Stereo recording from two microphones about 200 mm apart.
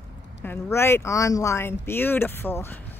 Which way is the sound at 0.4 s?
10° left (ahead or behind).